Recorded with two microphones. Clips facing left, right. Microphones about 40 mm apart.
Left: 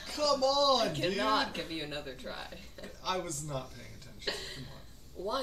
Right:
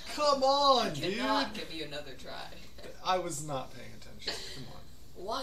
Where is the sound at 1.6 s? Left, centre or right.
Centre.